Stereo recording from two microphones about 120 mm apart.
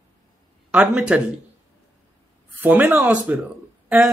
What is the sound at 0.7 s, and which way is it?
Speech, 10° right (ahead or behind).